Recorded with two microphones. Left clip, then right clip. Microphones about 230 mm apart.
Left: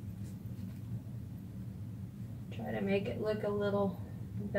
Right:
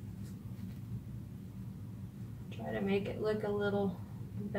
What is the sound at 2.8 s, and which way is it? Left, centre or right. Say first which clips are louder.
Speech: even; centre.